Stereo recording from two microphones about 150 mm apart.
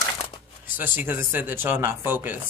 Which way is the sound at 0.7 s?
15° right (ahead or behind).